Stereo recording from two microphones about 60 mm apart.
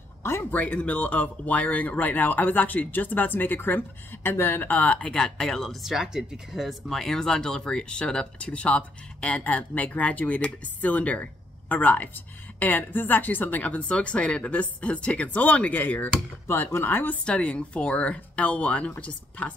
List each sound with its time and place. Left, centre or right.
0.2 s speech: left
0.5 s speech: left; by 6.7 s centre
6.9 s speech: centre; by 17.2 s left
17.2 s speech: centre